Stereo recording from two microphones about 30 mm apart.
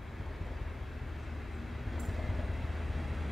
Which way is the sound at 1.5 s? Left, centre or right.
Centre.